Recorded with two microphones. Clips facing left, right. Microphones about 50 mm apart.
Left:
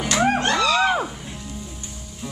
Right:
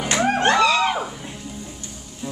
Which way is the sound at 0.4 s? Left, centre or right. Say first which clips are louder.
Right 3 dB; right.